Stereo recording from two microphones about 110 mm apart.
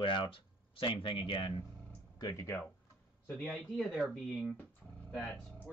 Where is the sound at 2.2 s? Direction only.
40° left (ahead or behind).